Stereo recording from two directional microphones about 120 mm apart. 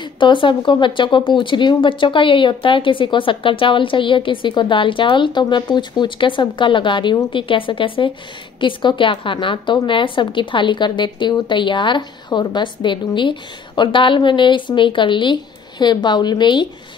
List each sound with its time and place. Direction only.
0.0 s a woman's voice: 45° left (ahead or behind)